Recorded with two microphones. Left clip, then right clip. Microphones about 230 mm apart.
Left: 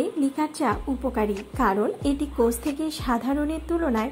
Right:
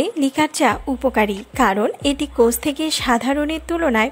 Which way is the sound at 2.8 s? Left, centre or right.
Right.